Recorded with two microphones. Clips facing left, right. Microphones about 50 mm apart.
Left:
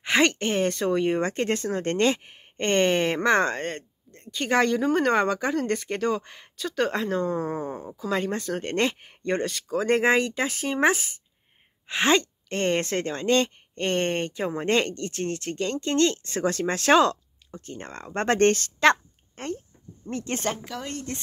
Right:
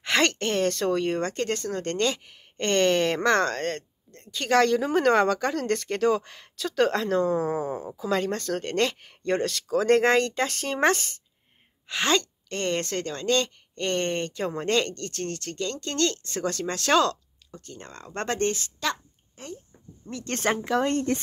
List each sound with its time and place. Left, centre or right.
0.0 s speech: centre; by 2.4 s left
2.5 s speech: centre
11.9 s a woman's voice: left
18.4 s a woman's voice: left
20.1 s speech: left
20.6 s speech: right